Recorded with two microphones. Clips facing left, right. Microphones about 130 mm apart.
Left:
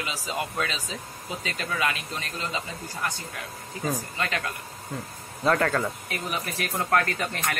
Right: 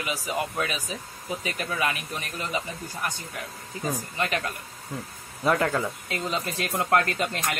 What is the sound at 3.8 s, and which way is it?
Speech, 20° right (ahead or behind).